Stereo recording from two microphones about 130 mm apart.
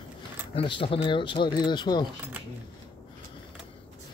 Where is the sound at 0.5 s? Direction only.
40° left (ahead or behind).